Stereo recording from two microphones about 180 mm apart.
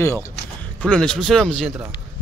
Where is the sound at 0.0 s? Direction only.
15° left (ahead or behind).